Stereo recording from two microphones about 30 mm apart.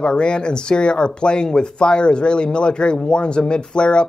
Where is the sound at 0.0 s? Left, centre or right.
Left.